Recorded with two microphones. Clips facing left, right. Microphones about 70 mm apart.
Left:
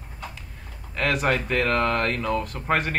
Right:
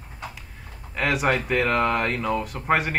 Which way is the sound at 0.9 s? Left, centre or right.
Centre.